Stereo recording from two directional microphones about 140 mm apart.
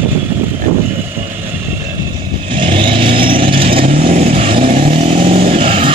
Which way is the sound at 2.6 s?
40° right (ahead or behind).